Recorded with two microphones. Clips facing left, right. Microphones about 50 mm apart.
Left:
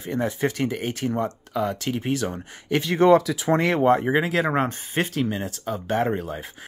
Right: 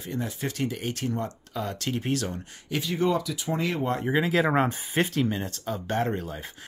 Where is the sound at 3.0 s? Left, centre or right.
Left.